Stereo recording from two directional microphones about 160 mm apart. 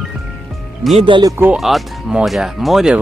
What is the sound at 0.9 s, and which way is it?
Speech, 35° right (ahead or behind).